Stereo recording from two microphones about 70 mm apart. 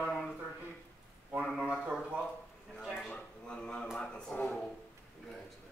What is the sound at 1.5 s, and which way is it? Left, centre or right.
Speech, centre.